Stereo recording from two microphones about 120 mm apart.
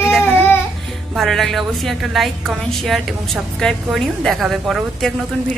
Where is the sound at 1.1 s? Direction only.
Centre (ahead or behind).